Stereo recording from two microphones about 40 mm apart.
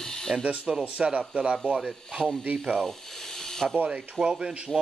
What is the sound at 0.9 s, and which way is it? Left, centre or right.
Speech, right.